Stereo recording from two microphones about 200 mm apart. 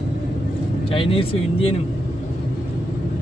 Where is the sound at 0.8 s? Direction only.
25° left (ahead or behind).